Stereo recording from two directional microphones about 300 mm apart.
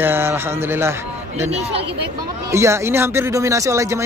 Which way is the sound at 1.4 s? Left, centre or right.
Centre.